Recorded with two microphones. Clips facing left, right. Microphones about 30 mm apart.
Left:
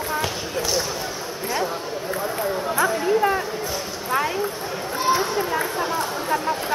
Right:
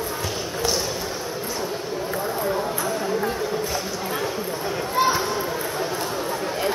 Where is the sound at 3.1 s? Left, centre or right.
Left.